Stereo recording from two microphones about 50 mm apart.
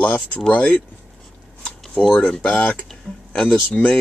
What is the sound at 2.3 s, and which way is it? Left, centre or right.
Speech, left.